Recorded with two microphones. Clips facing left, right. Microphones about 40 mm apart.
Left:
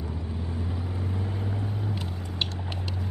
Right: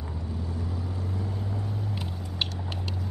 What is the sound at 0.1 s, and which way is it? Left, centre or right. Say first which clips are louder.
Vehicle: left 1 dB; left.